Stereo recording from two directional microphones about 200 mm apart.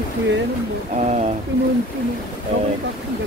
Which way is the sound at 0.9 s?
35° right (ahead or behind).